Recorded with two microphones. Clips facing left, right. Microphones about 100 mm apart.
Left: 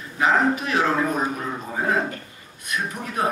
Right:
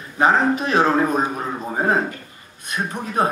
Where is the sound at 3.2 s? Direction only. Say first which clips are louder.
Right 4 dB; 30° right (ahead or behind).